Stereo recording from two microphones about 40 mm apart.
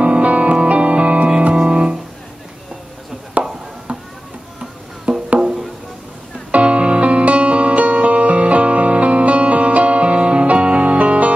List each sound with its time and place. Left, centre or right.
0.0 s music: right
1.5 s keyboard: right
5.1 s music: right
6.5 s music: right